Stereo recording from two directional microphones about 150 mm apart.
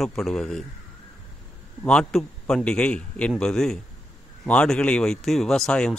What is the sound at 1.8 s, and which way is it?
A man's voice, 5° left (ahead or behind).